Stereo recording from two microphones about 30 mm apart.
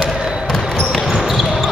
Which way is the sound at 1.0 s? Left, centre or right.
Centre.